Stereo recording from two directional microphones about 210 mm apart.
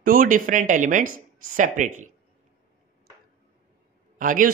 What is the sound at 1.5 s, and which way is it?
Speech, 35° right (ahead or behind).